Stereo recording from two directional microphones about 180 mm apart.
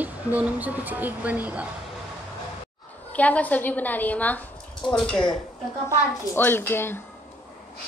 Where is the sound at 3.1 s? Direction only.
10° left (ahead or behind).